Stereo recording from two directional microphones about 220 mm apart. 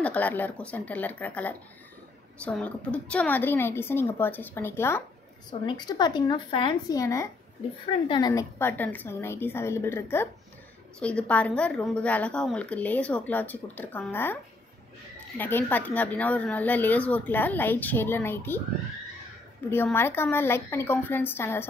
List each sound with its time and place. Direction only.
0.0 s a woman's voice: 5° left (ahead or behind)
19.7 s a woman's voice: 10° left (ahead or behind)